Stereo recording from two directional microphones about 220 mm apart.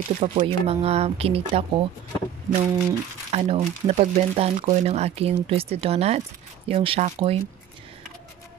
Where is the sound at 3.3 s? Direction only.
30° right (ahead or behind).